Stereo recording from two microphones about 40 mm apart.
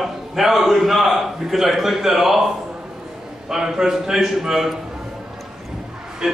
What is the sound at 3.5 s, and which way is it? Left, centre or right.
A man's voice, centre.